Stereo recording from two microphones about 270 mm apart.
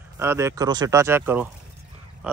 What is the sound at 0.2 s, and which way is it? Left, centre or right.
Speech, centre.